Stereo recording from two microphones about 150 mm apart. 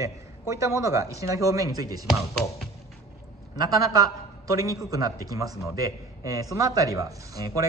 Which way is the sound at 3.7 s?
25° right (ahead or behind).